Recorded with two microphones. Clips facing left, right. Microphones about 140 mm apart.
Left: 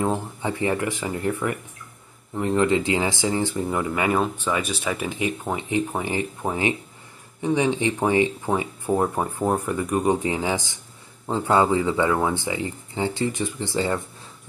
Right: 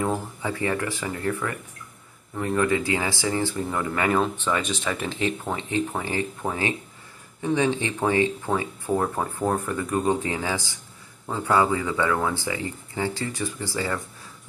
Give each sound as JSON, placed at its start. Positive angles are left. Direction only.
{"t": 0.0, "sound": "speech", "side_deg": 25}